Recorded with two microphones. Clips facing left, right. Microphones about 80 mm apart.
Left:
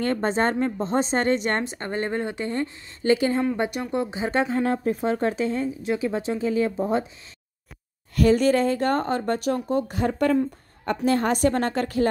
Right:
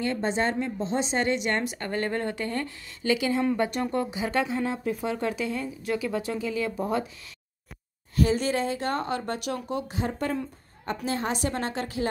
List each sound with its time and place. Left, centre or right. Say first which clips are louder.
0.0 s a woman's voice: left 4 dB; left
3.0 s a woman's voice: left 4 dB; left
3.5 s a woman's voice: left 1 dB; left
8.2 s speech: left 6 dB; left
9.8 s speech: left 7 dB; left